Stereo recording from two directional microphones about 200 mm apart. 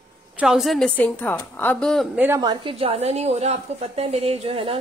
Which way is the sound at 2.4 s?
25° right (ahead or behind).